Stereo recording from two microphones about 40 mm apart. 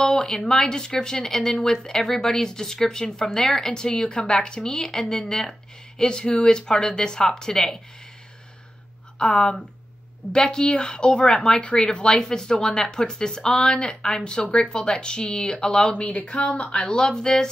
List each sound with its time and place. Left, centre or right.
0.0 s speech: centre
9.4 s speech: centre
15.9 s speech: left